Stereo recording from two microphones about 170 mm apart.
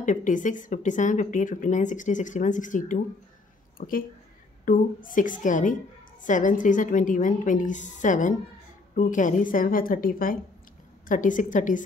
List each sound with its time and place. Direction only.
0.0 s a woman's voice: 50° left (ahead or behind)